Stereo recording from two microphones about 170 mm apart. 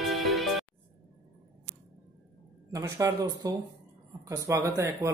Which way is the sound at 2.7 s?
20° right (ahead or behind).